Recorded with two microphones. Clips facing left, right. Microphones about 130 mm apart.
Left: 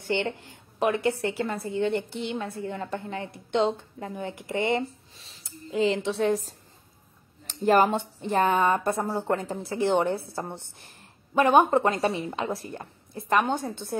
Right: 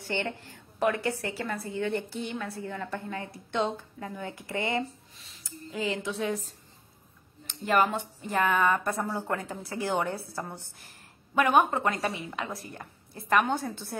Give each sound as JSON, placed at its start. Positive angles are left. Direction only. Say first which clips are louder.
{"t": 0.0, "sound": "speech", "louder": "left 4 dB", "side_deg": 20}